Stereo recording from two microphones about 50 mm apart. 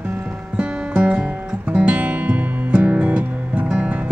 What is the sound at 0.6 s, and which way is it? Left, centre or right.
Music, right.